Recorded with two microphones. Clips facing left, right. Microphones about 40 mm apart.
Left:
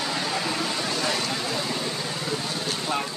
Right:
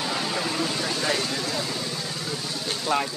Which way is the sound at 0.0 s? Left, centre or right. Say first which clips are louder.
Even; centre.